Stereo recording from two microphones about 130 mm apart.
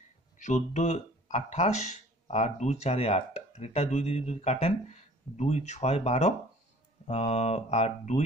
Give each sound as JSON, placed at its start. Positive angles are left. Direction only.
{"t": 0.4, "sound": "speech", "side_deg": 65}